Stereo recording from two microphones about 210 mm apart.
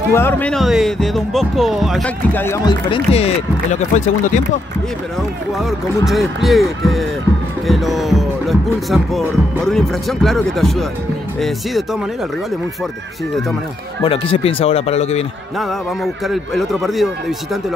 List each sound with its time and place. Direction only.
0.1 s speech: 10° left (ahead or behind)
2.9 s speech: 30° left (ahead or behind)
6.0 s speech: centre (ahead or behind)
14.0 s speech: 25° left (ahead or behind)
15.6 s speech: centre (ahead or behind)